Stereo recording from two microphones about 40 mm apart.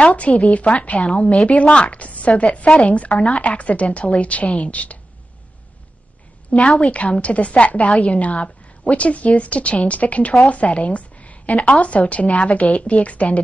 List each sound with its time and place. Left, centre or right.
0.4 s a woman's voice: left
1.3 s speech: centre
1.6 s a woman's voice: left
6.5 s a woman's voice: left